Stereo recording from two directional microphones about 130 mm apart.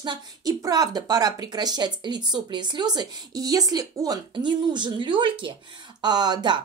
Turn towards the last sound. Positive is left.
turn(degrees=-35)  # may be behind; listen again after turning